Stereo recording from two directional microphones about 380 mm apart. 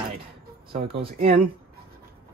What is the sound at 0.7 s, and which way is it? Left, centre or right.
Speech, centre.